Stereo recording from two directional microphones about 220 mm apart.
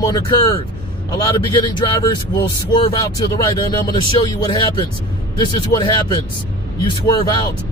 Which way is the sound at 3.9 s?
20° left (ahead or behind).